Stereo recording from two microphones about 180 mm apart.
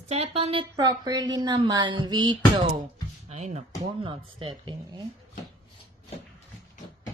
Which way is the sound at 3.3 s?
40° right (ahead or behind).